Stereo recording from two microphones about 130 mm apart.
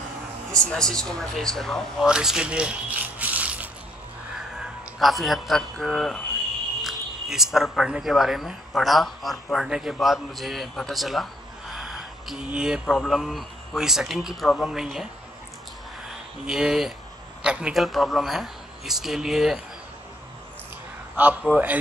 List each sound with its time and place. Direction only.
0.5 s speech: 5° left (ahead or behind); by 3.7 s 10° right (ahead or behind)
4.9 s speech: centre (ahead or behind)
16.4 s speech: 5° right (ahead or behind)
21.2 s a man's voice: 10° right (ahead or behind)